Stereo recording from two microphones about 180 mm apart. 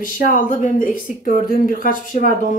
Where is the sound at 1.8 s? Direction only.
50° left (ahead or behind).